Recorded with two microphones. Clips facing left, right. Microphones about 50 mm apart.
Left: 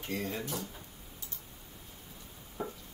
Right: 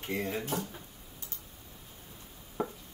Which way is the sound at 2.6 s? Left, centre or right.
Right.